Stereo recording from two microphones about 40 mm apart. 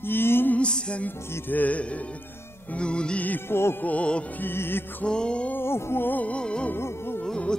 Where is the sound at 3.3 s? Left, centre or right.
Left.